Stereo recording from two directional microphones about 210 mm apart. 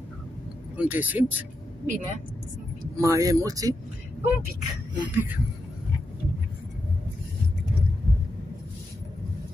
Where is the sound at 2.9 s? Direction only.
15° right (ahead or behind).